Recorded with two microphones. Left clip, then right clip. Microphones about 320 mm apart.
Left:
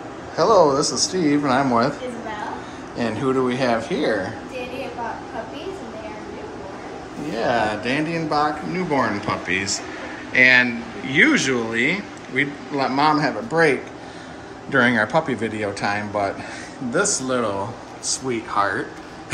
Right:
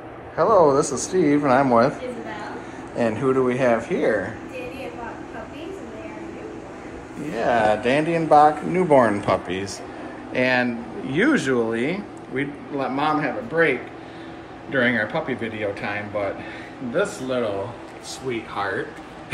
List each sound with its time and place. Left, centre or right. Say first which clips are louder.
0.4 s speech: left 1 dB; centre
3.0 s speech: right 1 dB; centre
7.3 s speech: right 2 dB; centre
15.2 s speech: left 2 dB; left
16.9 s speech: left 2 dB; centre